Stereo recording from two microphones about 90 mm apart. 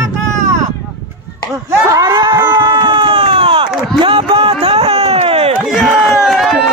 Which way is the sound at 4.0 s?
75° right (ahead or behind).